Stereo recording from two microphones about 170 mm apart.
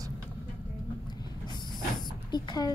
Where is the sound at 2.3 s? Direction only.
25° left (ahead or behind).